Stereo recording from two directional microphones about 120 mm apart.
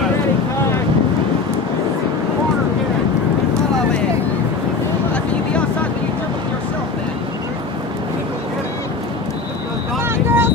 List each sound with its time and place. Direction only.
10.0 s vehicle: 20° right (ahead or behind)